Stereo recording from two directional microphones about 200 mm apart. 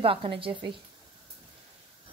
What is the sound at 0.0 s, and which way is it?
Speech, 25° right (ahead or behind).